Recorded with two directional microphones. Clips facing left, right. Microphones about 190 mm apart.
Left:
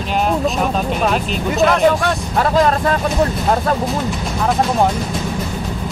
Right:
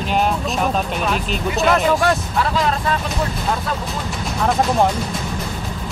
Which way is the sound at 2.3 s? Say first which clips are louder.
Left 5 dB; 45° left (ahead or behind).